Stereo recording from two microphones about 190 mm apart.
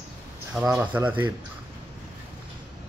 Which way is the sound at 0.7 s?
10° right (ahead or behind).